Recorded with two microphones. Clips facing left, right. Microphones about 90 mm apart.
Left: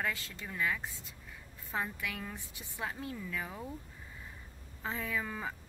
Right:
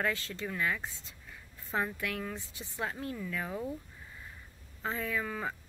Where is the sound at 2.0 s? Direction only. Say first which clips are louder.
Right 4 dB; 10° left (ahead or behind).